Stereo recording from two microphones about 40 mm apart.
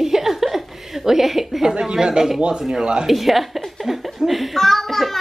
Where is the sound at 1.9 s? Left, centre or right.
Centre.